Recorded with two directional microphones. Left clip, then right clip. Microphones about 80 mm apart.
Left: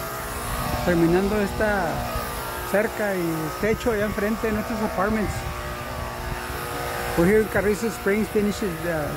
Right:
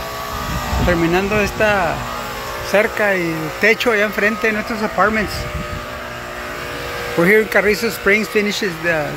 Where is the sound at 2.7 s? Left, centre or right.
Centre.